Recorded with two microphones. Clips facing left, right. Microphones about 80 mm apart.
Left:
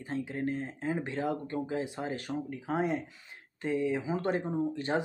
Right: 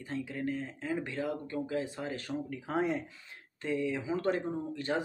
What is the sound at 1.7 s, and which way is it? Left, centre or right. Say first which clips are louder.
Speech: left 1 dB; centre.